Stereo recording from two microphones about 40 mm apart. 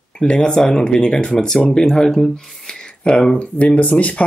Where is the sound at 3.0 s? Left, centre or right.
Left.